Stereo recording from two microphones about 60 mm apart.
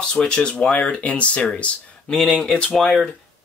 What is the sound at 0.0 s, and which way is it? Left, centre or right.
Speech, centre.